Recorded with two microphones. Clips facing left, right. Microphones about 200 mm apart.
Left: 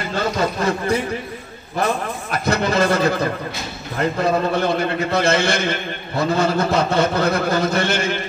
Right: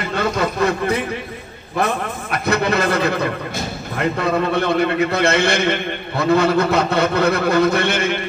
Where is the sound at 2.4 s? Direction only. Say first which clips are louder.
Even; 60° right (ahead or behind).